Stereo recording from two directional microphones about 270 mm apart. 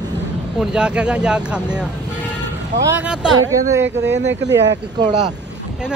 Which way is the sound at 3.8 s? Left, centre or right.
Right.